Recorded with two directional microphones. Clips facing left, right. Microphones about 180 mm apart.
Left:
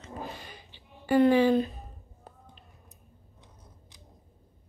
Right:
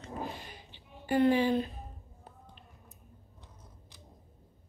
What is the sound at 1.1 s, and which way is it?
Speech, 90° left.